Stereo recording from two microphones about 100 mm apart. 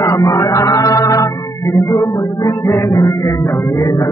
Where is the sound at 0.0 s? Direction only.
35° left (ahead or behind).